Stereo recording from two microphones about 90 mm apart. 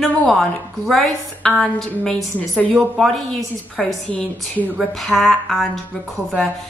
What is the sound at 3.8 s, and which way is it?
A woman's voice, 10° left (ahead or behind).